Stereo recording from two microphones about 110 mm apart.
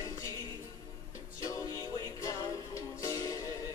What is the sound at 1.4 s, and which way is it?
Music, 30° left (ahead or behind).